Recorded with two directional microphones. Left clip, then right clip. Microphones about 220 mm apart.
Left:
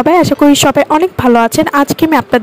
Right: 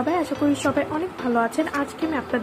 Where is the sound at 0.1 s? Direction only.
45° left (ahead or behind).